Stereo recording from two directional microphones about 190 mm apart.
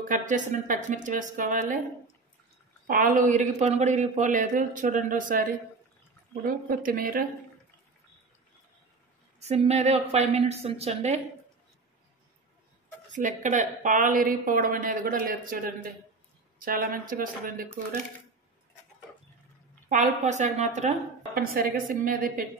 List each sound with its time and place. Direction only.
0.1 s a woman's voice: 40° right (ahead or behind)
2.9 s a woman's voice: 45° right (ahead or behind)
9.4 s a woman's voice: 35° right (ahead or behind)
13.1 s a woman's voice: 40° right (ahead or behind)
19.9 s a woman's voice: 40° right (ahead or behind)